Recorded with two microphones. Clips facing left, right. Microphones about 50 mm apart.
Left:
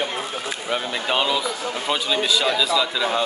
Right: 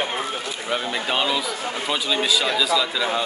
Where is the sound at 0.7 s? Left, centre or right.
Centre.